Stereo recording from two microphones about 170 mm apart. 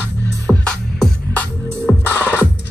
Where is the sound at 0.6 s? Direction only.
5° left (ahead or behind).